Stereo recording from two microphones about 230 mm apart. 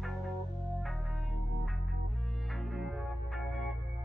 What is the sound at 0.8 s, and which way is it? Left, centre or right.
Music, centre.